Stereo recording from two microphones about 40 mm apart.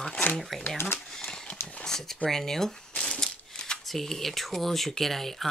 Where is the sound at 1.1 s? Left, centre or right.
Centre.